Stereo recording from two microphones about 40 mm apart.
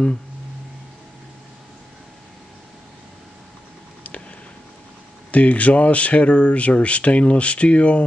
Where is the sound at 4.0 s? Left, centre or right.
Left.